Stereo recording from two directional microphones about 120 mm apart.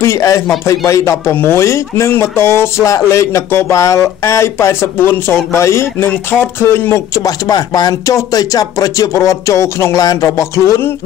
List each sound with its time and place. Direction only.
0.0 s speech: 25° left (ahead or behind)